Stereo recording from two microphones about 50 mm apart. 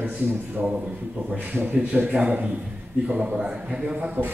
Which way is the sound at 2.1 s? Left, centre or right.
Right.